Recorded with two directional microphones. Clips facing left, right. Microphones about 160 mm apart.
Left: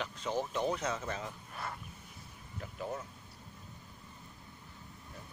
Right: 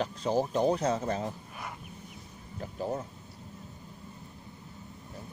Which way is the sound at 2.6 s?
35° right (ahead or behind).